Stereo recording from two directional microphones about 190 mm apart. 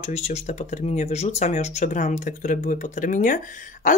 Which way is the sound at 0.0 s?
35° left (ahead or behind).